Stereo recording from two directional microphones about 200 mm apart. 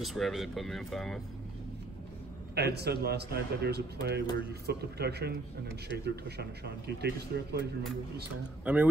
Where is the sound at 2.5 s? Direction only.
55° right (ahead or behind).